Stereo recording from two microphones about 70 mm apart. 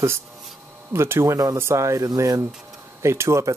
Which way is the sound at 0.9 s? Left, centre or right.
Right.